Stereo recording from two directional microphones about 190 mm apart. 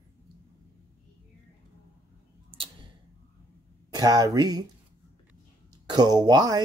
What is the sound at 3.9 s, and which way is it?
Speech, 20° right (ahead or behind).